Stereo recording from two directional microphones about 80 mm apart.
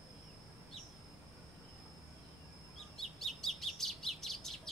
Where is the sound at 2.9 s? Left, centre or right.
Centre.